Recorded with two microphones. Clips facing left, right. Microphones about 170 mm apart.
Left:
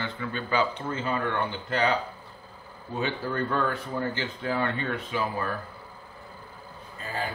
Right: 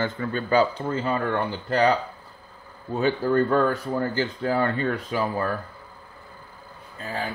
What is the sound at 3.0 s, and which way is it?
Speech, 40° right (ahead or behind).